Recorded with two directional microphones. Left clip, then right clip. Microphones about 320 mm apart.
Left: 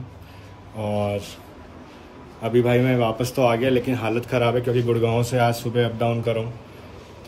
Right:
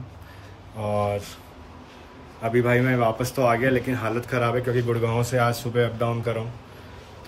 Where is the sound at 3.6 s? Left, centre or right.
Left.